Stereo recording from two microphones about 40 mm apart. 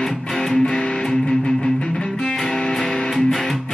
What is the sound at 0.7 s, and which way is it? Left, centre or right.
Music, left.